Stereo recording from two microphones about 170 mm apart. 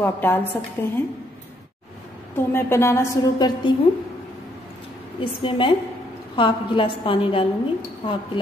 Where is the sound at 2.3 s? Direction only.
15° left (ahead or behind).